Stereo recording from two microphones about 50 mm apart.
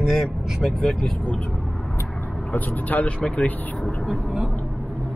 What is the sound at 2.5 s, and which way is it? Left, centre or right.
Speech, left.